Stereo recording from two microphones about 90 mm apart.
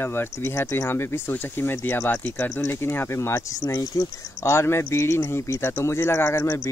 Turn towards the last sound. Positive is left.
turn(degrees=20)  # may be behind; listen again after turning